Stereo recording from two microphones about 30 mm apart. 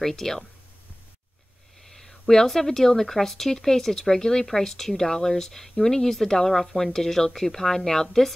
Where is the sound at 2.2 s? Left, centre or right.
Centre.